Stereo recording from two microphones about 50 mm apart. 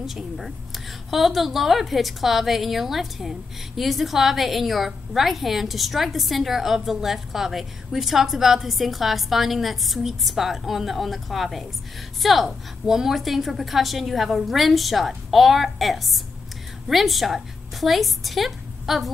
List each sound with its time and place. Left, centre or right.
0.0 s a woman's voice: centre